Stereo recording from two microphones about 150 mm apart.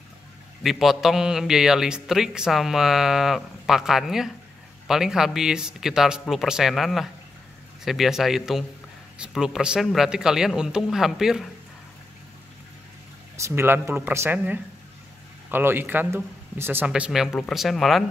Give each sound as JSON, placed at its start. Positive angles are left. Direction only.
{"t": 0.7, "sound": "speech", "side_deg": 0}
{"t": 13.4, "sound": "speech", "side_deg": -15}